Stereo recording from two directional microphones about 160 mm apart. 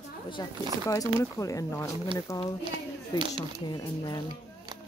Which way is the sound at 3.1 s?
25° left (ahead or behind).